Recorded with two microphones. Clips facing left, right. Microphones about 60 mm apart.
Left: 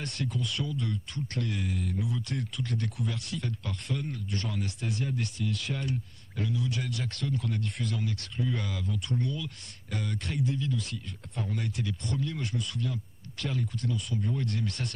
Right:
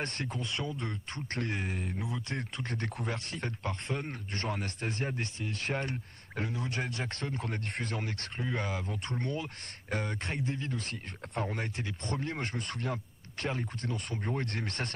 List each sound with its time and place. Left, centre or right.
0.0 s speech: right